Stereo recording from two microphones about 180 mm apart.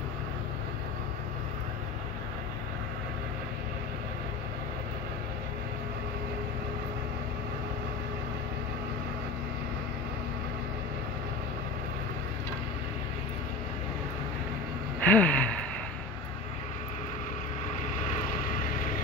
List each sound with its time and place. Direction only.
15.0 s gasp: 10° left (ahead or behind)